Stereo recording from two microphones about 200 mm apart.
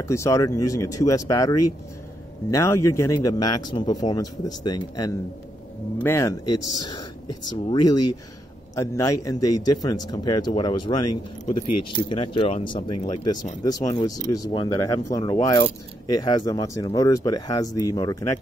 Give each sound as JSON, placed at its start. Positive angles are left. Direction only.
{"t": 0.0, "sound": "speech", "side_deg": 15}